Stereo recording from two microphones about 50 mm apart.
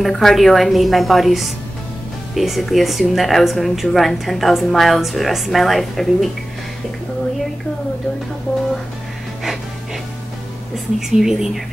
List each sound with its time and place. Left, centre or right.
0.0 s a woman's voice: centre
11.0 s speech: centre